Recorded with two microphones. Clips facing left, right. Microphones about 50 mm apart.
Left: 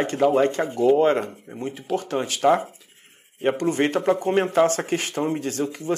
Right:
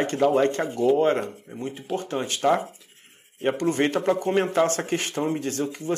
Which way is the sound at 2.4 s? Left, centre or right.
Centre.